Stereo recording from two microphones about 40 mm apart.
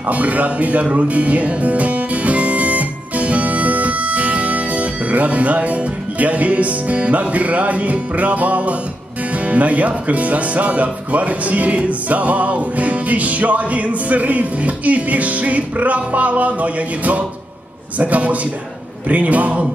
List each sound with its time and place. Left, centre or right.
0.1 s speech: right
9.5 s music: right